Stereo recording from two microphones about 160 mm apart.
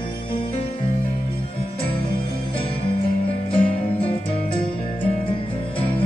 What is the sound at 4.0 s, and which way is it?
Music, 35° left (ahead or behind).